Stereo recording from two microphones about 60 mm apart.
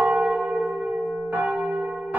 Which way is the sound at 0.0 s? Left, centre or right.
Centre.